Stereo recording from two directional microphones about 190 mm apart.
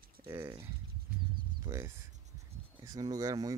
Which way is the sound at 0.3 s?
15° right (ahead or behind).